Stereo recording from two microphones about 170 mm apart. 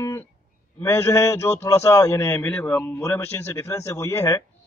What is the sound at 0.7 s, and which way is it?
Speech, 15° left (ahead or behind).